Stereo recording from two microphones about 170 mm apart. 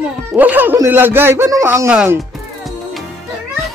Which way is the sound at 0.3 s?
10° right (ahead or behind).